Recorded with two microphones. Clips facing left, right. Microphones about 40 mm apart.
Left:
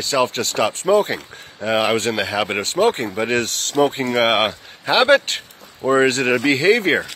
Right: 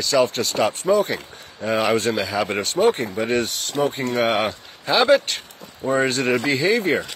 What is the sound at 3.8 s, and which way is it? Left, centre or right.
A man's voice, left.